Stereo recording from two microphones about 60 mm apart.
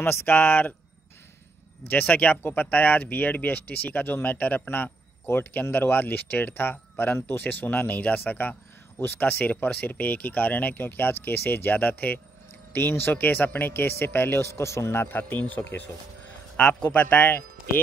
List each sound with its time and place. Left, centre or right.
0.0 s speech: left
1.9 s speech: left
15.0 s speech: left
16.5 s speech: left